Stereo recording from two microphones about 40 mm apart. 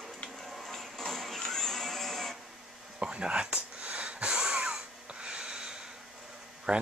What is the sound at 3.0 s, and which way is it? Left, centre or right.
Wheeze, right.